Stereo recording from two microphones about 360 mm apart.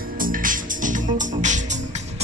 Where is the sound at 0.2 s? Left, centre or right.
Right.